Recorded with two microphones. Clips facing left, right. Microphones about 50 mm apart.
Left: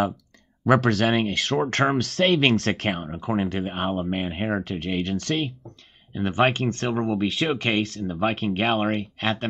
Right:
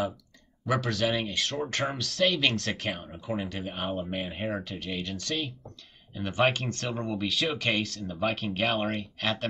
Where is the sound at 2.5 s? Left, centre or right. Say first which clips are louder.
Left 7 dB; left.